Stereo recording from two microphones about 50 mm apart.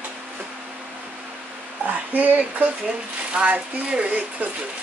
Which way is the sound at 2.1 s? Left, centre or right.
Right.